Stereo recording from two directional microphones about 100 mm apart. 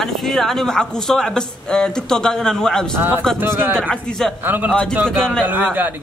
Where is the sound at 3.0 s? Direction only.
20° right (ahead or behind).